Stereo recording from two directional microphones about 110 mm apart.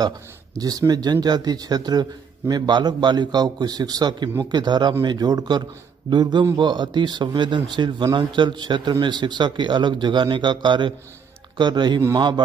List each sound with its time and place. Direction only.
0.6 s a man's voice: 35° right (ahead or behind)